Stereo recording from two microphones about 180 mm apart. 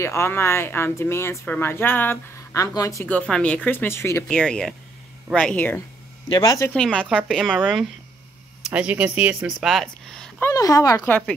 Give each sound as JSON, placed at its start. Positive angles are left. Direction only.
{"t": 0.0, "sound": "speech", "side_deg": 15}
{"t": 6.2, "sound": "speech", "side_deg": 25}
{"t": 6.7, "sound": "a woman's voice", "side_deg": 5}
{"t": 10.5, "sound": "speech", "side_deg": 20}